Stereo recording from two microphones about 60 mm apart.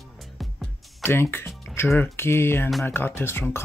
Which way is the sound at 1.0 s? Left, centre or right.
Left.